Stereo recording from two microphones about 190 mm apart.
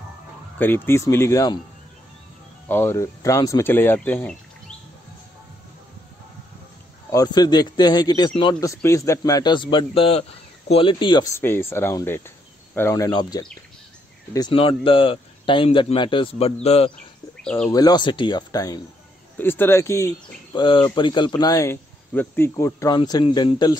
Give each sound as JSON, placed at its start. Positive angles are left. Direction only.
{"t": 0.6, "sound": "speech", "side_deg": 10}
{"t": 2.7, "sound": "speech", "side_deg": 15}
{"t": 7.1, "sound": "speech", "side_deg": 20}
{"t": 11.3, "sound": "speech", "side_deg": 10}
{"t": 17.4, "sound": "speech", "side_deg": 5}
{"t": 17.6, "sound": "speech", "side_deg": 20}
{"t": 20.5, "sound": "speech", "side_deg": 25}